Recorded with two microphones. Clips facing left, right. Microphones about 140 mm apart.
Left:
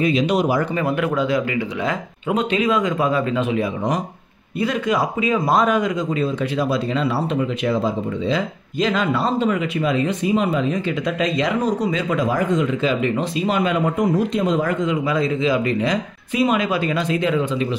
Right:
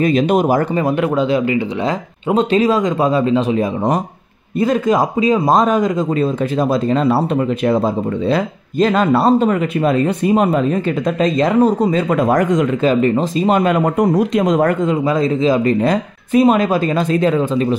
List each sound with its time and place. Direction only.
0.0 s speech: 50° right (ahead or behind)
0.7 s speech: 30° right (ahead or behind); by 12.6 s 70° right (ahead or behind)
12.8 s speech: 45° right (ahead or behind)